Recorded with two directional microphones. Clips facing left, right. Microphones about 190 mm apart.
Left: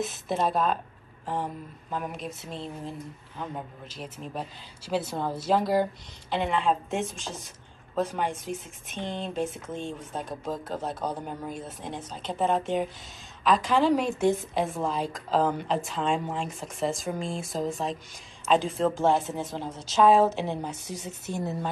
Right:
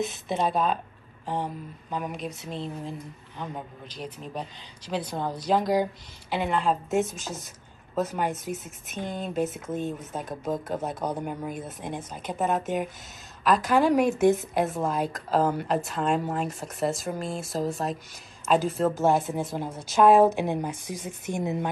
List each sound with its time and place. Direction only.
0.0 s speech: centre (ahead or behind); by 21.6 s 15° right (ahead or behind)